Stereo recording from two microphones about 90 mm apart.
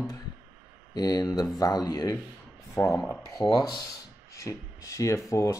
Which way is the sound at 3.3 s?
45° left (ahead or behind).